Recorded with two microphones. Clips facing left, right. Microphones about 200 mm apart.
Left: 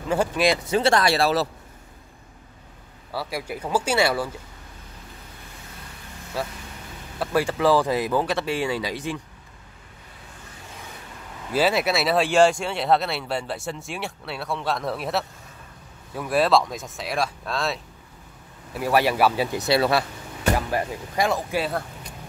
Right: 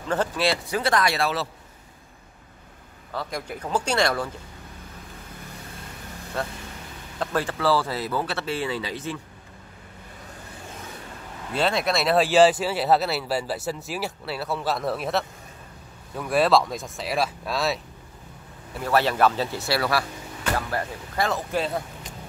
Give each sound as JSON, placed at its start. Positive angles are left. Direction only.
{"t": 0.1, "sound": "speech", "side_deg": 15}
{"t": 3.1, "sound": "speech", "side_deg": 5}
{"t": 6.4, "sound": "speech", "side_deg": 5}
{"t": 11.5, "sound": "speech", "side_deg": 5}
{"t": 18.7, "sound": "speech", "side_deg": 10}